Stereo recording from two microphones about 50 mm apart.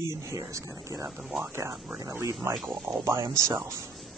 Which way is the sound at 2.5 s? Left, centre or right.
Centre.